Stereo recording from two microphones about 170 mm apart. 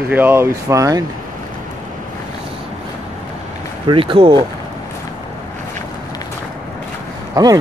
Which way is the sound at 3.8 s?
30° right (ahead or behind).